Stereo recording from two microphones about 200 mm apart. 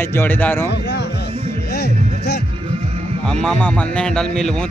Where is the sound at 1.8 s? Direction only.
55° left (ahead or behind).